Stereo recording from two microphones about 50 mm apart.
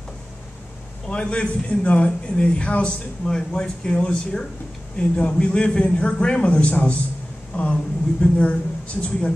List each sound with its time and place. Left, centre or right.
1.0 s a man's voice: centre